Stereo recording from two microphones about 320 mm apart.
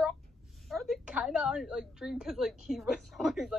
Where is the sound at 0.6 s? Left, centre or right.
Centre.